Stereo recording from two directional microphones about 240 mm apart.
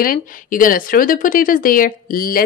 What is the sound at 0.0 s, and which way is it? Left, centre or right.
Speech, left.